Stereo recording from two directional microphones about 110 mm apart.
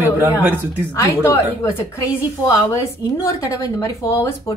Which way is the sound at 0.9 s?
25° left (ahead or behind).